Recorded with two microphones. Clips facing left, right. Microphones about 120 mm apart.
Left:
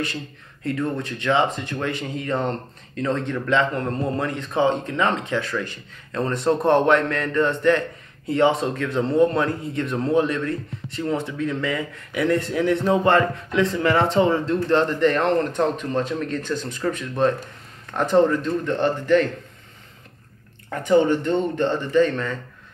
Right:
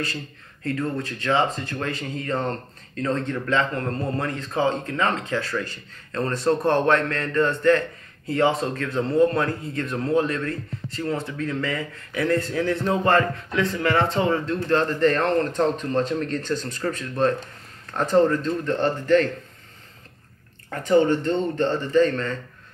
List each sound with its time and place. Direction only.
0.7 s a man's voice: 20° left (ahead or behind)
20.7 s a man's voice: 15° left (ahead or behind)